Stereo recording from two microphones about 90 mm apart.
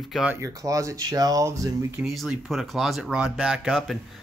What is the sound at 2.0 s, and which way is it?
Speech, centre (ahead or behind).